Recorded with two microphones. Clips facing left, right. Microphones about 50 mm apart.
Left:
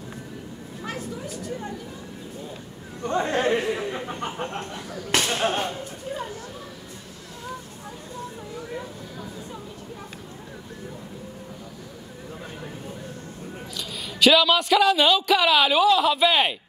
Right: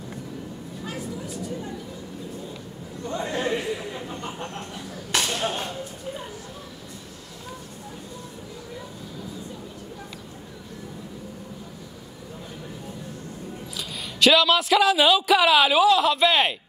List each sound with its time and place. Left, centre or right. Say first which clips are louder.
0.8 s a sound: left 1 dB; left
3.0 s chatter: left 4 dB; left
5.3 s speech: left 3 dB; left
13.7 s speech: even; centre